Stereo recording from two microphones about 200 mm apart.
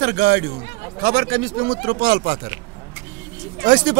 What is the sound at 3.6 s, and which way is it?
Speech, 40° right (ahead or behind).